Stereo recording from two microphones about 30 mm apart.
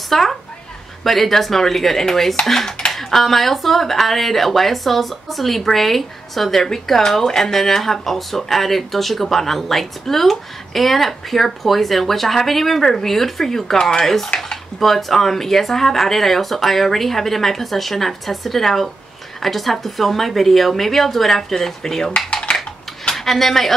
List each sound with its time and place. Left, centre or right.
0.1 s a woman's voice: centre
22.3 s cutlery: left
23.1 s speech: centre